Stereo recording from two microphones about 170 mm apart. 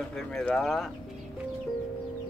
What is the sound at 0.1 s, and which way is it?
Speech, 5° left (ahead or behind).